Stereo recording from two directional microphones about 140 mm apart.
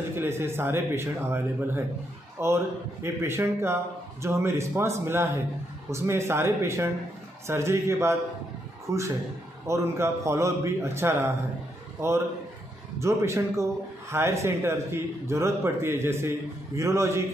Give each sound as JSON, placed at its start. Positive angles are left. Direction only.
{"t": 0.1, "sound": "a man's voice", "side_deg": -15}
{"t": 13.0, "sound": "a man's voice", "side_deg": -20}